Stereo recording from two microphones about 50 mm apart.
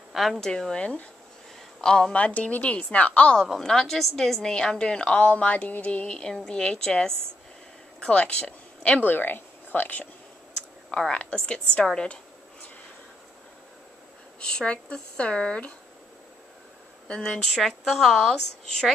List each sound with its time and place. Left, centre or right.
0.1 s speech: centre
0.4 s a woman's voice: centre
0.7 s a woman's voice: left
2.1 s speech: left
3.3 s a woman's voice: centre
8.1 s a sound: left
9.0 s speech: left
10.9 s a woman's voice: centre
14.5 s speech: centre
17.2 s speech: centre